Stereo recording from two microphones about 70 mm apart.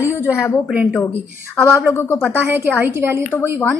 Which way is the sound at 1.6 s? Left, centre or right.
Left.